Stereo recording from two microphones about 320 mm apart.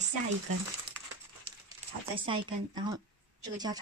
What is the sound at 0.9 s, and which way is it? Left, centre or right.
Crumpling, centre.